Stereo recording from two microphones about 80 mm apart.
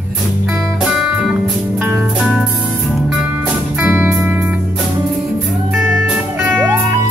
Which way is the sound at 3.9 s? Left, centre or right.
Right.